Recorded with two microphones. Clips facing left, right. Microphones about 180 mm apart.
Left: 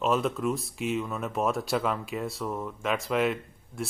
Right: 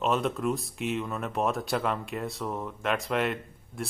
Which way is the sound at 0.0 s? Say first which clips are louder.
Left 1 dB; centre (ahead or behind).